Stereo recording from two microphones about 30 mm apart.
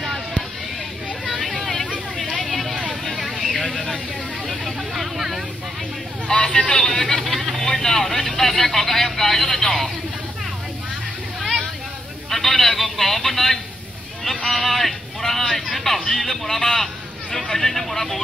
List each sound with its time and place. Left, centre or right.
2.4 s vehicle: centre
3.7 s vehicle: centre
4.5 s vehicle: centre
6.4 s a man's voice: left
6.9 s speech: centre
7.2 s a sound: centre
7.6 s vehicle: centre
8.0 s a man's voice: centre
12.3 s a man's voice: centre